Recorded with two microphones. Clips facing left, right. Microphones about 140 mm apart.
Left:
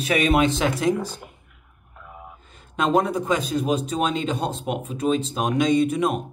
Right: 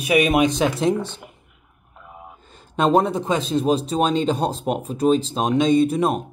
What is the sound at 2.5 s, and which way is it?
A man's voice, 35° right (ahead or behind).